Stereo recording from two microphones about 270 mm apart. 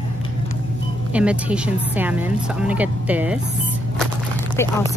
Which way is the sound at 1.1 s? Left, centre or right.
Centre.